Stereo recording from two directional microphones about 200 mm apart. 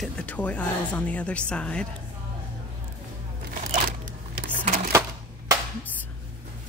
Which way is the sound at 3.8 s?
50° right (ahead or behind).